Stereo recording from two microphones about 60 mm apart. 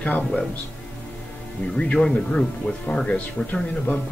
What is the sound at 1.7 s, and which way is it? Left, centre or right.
Speech, centre.